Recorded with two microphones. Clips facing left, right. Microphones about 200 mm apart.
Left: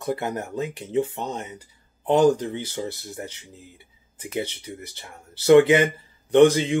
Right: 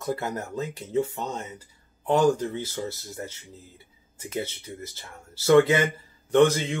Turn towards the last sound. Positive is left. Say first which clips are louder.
# left 4 dB
turn(degrees=15)  # may be behind; listen again after turning